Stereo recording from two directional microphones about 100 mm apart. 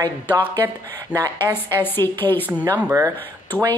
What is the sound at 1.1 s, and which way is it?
Speech, 40° right (ahead or behind).